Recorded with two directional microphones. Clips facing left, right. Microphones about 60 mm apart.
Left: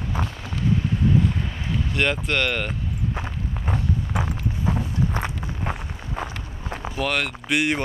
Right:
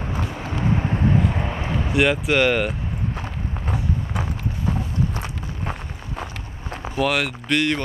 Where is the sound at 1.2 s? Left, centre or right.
Right.